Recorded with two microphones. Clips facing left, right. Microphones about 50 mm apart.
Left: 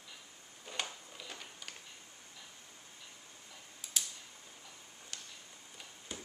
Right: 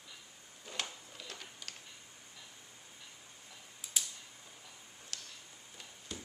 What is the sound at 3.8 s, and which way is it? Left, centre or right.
Tick-tock, centre.